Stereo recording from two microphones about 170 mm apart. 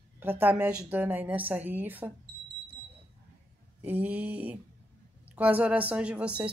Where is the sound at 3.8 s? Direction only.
10° right (ahead or behind).